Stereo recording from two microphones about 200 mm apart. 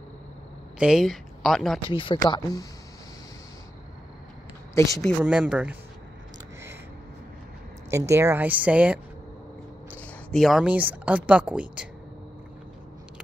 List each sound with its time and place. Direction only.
0.7 s speech: 5° right (ahead or behind)
1.9 s speech: 25° left (ahead or behind)
4.7 s speech: 15° left (ahead or behind)
5.2 s speech: 5° right (ahead or behind)
7.9 s speech: 15° right (ahead or behind)